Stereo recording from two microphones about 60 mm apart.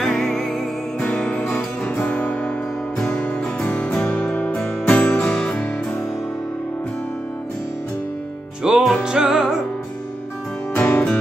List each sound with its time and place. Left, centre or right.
0.0 s music: centre
1.0 s guitar: centre
3.6 s music: left
8.6 s music: centre
10.7 s music: left